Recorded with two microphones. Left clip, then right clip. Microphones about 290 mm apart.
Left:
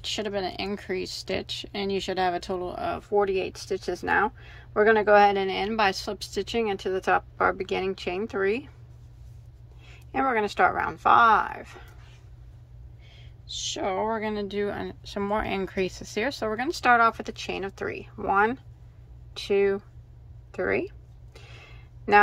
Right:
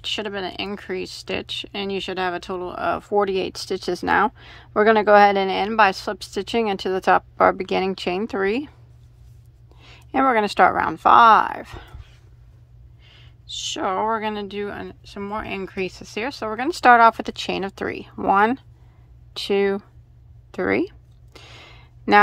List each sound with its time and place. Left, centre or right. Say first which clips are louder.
0.0 s speech: right 3 dB; centre
9.8 s speech: right 7 dB; centre
13.0 s speech: right 5 dB; centre
20.5 s a sound: right 5 dB; right